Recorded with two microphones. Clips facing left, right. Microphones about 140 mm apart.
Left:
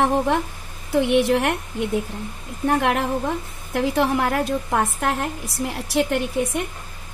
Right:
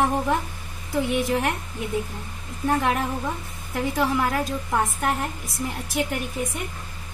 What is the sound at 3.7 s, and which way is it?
A woman's voice, 65° left (ahead or behind).